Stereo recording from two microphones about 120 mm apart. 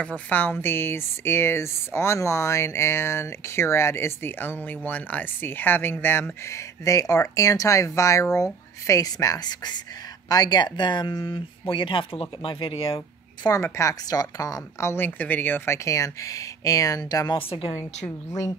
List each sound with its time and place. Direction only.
0.0 s speech: 10° left (ahead or behind); by 13.5 s 50° left (ahead or behind)
13.5 s speech: 25° left (ahead or behind)
17.4 s speech: 50° left (ahead or behind)
17.7 s speech: 20° left (ahead or behind)